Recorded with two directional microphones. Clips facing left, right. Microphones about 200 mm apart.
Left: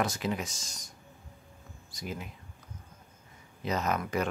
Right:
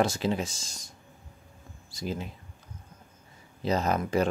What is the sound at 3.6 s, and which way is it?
Speech, 30° right (ahead or behind).